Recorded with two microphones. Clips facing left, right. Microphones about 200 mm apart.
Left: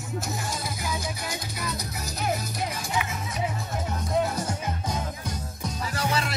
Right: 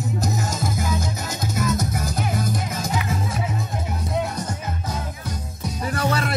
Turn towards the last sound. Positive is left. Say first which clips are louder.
# right 5 dB
turn(degrees=-55)  # may be behind; listen again after turning